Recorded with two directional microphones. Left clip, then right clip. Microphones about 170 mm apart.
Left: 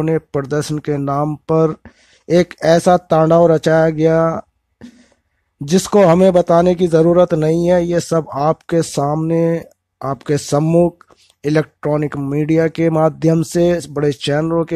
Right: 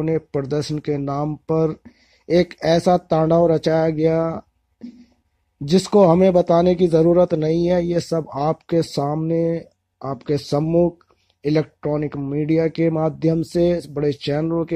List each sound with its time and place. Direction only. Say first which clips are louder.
0.0 s speech: left 4 dB; 30° left (ahead or behind); by 11.0 s 45° left (ahead or behind)
11.4 s speech: left 4 dB; 30° left (ahead or behind)